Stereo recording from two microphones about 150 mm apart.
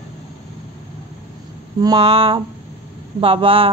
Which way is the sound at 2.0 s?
40° right (ahead or behind).